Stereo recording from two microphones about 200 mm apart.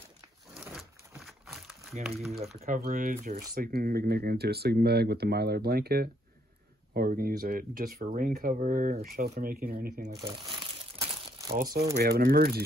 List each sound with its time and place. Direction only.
0.6 s crumpling: centre (ahead or behind)
2.0 s speech: centre (ahead or behind)
2.8 s speech: 45° right (ahead or behind)
10.6 s crumpling: 15° right (ahead or behind)
11.5 s speech: 45° right (ahead or behind)